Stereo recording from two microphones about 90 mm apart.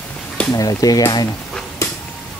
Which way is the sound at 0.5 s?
45° left (ahead or behind).